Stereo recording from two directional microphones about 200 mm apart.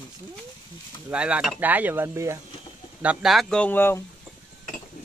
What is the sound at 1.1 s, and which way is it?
Cutlery, 5° right (ahead or behind).